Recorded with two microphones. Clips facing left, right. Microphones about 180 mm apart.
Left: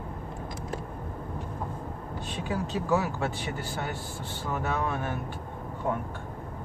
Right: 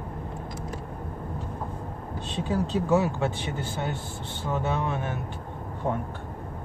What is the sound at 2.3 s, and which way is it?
Speech, 25° right (ahead or behind).